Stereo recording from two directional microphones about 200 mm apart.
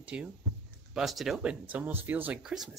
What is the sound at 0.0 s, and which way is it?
Speech, 5° right (ahead or behind).